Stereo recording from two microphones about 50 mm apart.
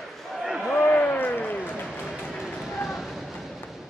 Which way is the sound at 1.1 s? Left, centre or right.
Left.